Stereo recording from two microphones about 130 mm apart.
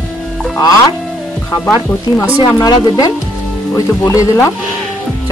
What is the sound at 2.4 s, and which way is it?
A woman's voice, 30° left (ahead or behind).